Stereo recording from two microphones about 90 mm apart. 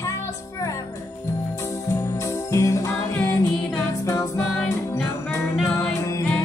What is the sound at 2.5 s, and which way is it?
Jingle bell, 35° left (ahead or behind).